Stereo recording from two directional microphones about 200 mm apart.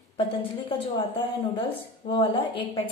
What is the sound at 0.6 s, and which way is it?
A woman's voice, 30° left (ahead or behind).